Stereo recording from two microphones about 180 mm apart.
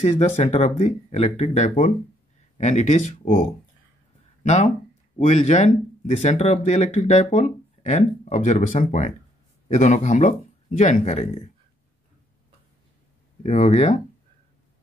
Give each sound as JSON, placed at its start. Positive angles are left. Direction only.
{"t": 0.2, "sound": "speech", "side_deg": 40}
{"t": 13.4, "sound": "speech", "side_deg": 40}